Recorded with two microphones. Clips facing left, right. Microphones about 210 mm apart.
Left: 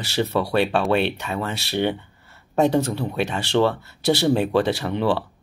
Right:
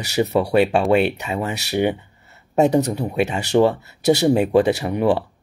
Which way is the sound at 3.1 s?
20° right (ahead or behind).